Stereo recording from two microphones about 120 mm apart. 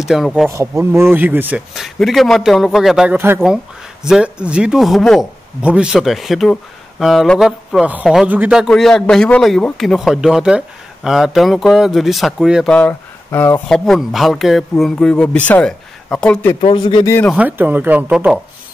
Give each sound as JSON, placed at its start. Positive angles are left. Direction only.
{"t": 0.0, "sound": "speech", "side_deg": -5}
{"t": 0.5, "sound": "speech", "side_deg": -25}
{"t": 1.8, "sound": "speech", "side_deg": 0}
{"t": 3.1, "sound": "speech", "side_deg": -15}
{"t": 12.7, "sound": "speech", "side_deg": 15}
{"t": 13.7, "sound": "speech", "side_deg": 0}
{"t": 16.7, "sound": "speech", "side_deg": 40}
{"t": 17.0, "sound": "speech", "side_deg": 20}
{"t": 17.4, "sound": "speech", "side_deg": -15}